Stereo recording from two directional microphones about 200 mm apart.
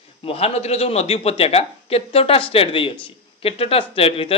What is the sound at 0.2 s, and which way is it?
Speech, 30° left (ahead or behind).